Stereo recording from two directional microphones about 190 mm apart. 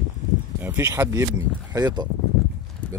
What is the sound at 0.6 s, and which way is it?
Speech, 15° right (ahead or behind).